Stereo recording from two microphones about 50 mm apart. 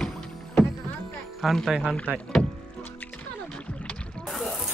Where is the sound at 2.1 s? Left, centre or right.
Right.